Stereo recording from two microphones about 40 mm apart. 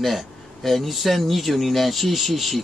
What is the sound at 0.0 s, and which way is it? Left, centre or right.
Speech, centre.